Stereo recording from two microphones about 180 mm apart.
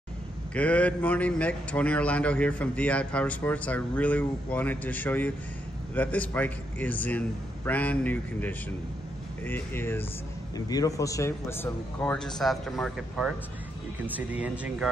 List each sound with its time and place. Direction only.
0.6 s a man's voice: 5° left (ahead or behind)